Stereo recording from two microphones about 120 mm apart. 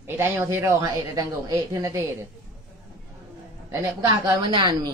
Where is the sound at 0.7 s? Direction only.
35° right (ahead or behind).